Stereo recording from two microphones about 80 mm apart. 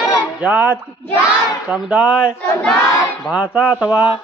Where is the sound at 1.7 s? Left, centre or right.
Centre.